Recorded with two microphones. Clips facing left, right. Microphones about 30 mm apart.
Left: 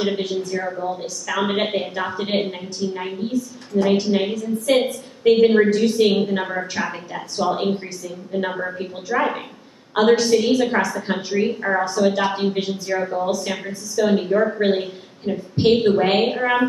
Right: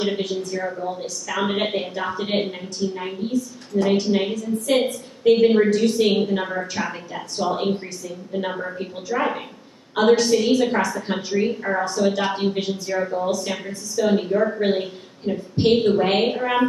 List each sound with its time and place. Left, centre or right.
0.0 s a woman's voice: centre
3.7 s a woman's voice: centre